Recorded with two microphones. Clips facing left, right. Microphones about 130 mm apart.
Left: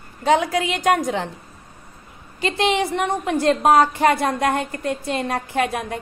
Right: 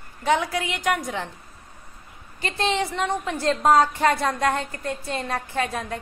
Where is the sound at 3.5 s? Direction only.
65° left (ahead or behind).